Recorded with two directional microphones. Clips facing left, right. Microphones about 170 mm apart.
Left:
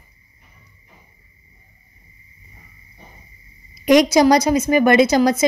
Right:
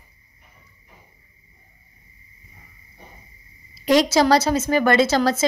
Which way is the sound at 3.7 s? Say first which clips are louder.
Left 4 dB; 15° left (ahead or behind).